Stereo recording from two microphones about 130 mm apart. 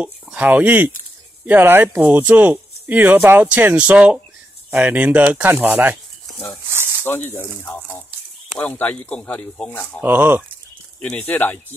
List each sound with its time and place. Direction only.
0.0 s speech: 10° right (ahead or behind)
6.7 s a sound: 20° right (ahead or behind)
7.1 s speech: 15° left (ahead or behind)
10.0 s speech: 15° right (ahead or behind)
11.0 s speech: 5° left (ahead or behind)